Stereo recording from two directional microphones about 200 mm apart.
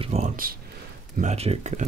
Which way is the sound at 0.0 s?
35° right (ahead or behind).